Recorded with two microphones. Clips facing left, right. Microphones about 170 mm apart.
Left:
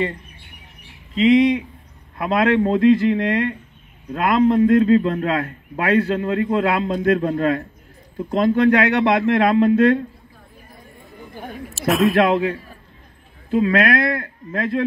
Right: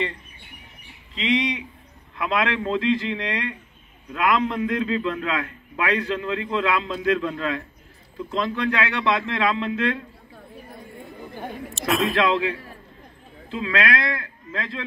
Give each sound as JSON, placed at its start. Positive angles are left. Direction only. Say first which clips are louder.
{"t": 1.1, "sound": "a man's voice", "louder": "left 10 dB", "side_deg": 45}
{"t": 4.1, "sound": "a man's voice", "louder": "left 6 dB", "side_deg": 40}
{"t": 11.8, "sound": "speech", "louder": "left 6 dB", "side_deg": 5}
{"t": 12.1, "sound": "a man's voice", "louder": "left 5 dB", "side_deg": 50}